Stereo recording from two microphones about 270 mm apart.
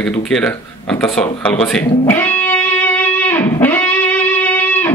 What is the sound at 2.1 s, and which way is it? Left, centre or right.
Music, centre.